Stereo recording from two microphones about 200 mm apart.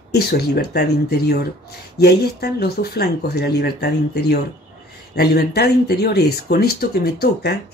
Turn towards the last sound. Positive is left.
turn(degrees=50)  # may be behind; listen again after turning